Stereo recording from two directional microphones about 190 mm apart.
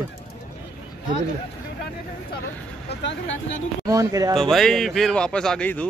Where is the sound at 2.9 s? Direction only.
70° left (ahead or behind).